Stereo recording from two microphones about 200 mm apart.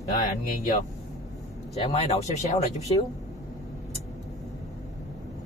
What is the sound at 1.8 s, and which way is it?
Speech, 30° left (ahead or behind).